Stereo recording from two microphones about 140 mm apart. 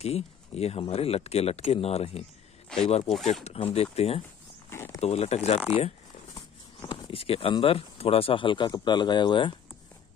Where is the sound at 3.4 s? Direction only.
45° left (ahead or behind).